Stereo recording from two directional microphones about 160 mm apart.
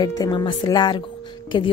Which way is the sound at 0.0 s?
25° left (ahead or behind).